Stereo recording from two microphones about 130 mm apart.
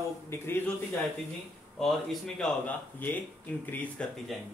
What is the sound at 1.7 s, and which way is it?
Speech, 5° left (ahead or behind).